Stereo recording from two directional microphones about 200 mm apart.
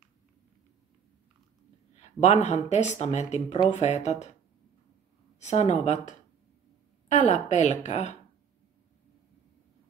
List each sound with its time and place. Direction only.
2.0 s speech: 35° left (ahead or behind)
5.4 s speech: 35° left (ahead or behind)
7.1 s speech: 35° left (ahead or behind)